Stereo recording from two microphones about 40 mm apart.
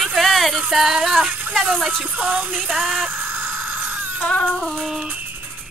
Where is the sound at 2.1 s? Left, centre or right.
Right.